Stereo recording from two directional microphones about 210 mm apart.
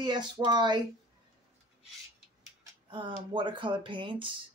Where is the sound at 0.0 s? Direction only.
20° right (ahead or behind).